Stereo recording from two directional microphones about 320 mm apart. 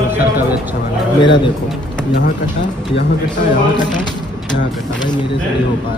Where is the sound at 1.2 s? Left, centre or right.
Centre.